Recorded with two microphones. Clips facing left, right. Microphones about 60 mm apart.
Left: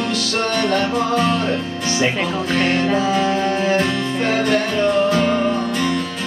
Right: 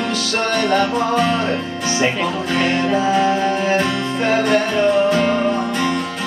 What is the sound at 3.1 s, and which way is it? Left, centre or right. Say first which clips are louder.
Music: right 2 dB; centre.